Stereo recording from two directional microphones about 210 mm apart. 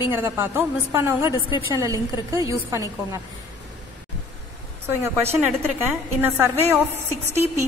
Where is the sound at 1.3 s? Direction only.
20° left (ahead or behind).